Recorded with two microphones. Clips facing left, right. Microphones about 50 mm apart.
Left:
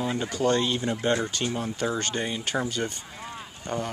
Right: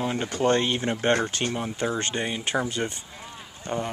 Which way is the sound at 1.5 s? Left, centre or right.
Right.